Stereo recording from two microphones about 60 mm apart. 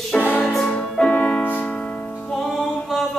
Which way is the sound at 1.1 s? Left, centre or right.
Left.